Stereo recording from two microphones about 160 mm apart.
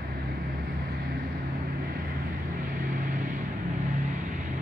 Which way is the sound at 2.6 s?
55° right (ahead or behind).